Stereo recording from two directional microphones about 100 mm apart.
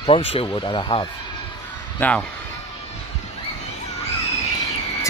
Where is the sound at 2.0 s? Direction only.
15° left (ahead or behind).